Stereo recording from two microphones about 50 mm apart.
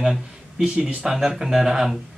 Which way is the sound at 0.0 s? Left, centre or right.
Centre.